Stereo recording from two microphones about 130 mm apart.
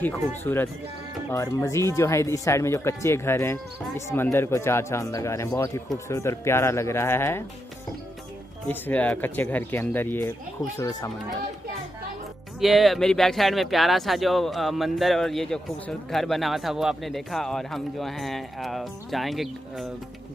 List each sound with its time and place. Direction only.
0.4 s speech: 15° left (ahead or behind)
8.6 s speech: 10° left (ahead or behind)
10.8 s speech: 25° left (ahead or behind)
12.5 s speech: centre (ahead or behind)